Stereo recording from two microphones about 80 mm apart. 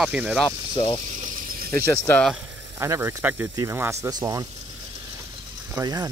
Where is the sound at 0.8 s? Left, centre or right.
Left.